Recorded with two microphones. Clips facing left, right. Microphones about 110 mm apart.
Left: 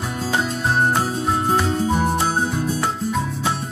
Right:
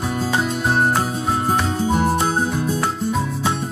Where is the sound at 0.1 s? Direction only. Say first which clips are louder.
Right 1 dB; centre (ahead or behind).